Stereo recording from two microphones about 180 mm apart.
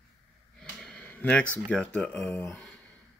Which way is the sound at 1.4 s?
10° right (ahead or behind).